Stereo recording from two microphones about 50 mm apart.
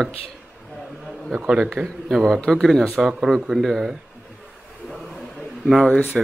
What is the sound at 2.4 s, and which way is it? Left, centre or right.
Speech, centre.